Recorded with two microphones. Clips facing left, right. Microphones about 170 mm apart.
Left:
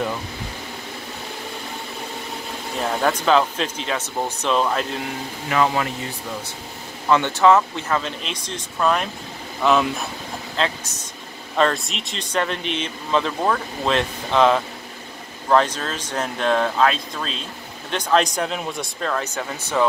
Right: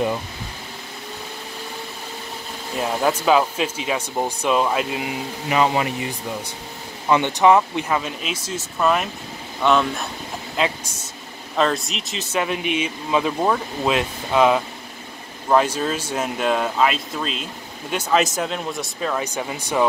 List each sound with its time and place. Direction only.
2.8 s speech: 5° right (ahead or behind)
7.1 s speech: 15° right (ahead or behind); by 10.0 s centre (ahead or behind)
10.5 s speech: 10° right (ahead or behind)